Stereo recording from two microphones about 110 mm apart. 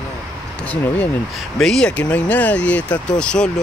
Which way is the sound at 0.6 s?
15° left (ahead or behind).